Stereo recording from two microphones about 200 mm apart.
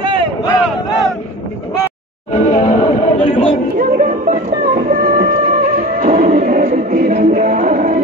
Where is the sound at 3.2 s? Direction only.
25° left (ahead or behind).